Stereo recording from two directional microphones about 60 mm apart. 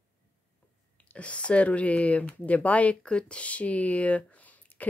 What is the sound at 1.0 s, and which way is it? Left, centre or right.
Speech, left.